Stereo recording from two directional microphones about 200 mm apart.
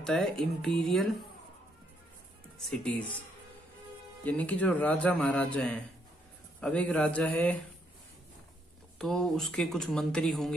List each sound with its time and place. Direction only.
0.0 s speech: centre (ahead or behind)
2.6 s a man's voice: 5° left (ahead or behind)
8.9 s speech: centre (ahead or behind)